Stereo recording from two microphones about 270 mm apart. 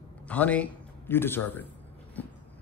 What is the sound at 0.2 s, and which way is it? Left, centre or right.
Speech, centre.